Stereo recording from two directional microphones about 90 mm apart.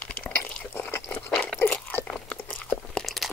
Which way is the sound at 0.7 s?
25° left (ahead or behind).